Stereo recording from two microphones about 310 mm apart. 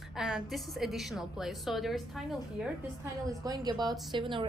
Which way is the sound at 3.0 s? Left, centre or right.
Centre.